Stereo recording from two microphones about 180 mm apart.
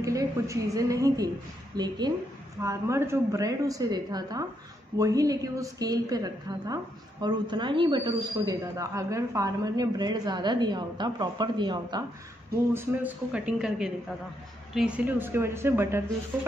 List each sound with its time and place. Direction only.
0.0 s a woman's voice: 20° right (ahead or behind)
12.7 s a woman's voice: 10° right (ahead or behind)